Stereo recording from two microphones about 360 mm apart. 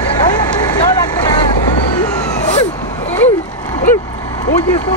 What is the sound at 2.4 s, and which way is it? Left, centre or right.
Vehicle, centre.